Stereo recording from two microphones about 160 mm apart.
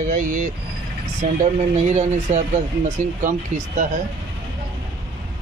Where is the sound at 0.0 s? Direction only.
55° right (ahead or behind).